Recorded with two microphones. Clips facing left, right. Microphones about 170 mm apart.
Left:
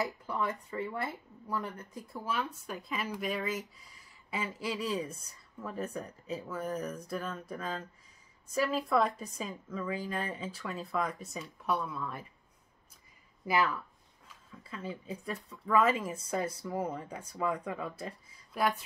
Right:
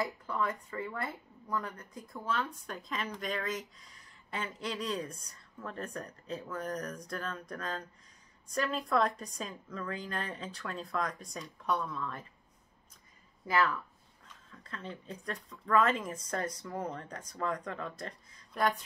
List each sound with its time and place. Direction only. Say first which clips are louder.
0.0 s speech: even; 5° left (ahead or behind)
0.5 s speech: left 2 dB; 25° left (ahead or behind)
0.8 s speech: left 2 dB; 5° left (ahead or behind)
1.6 s speech: left 2 dB; 25° left (ahead or behind)
2.0 s a woman's voice: even; 10° left (ahead or behind)
13.5 s speech: even; 15° left (ahead or behind)